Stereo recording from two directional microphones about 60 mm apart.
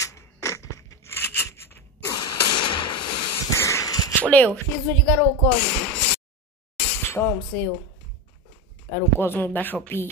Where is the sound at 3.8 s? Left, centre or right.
Left.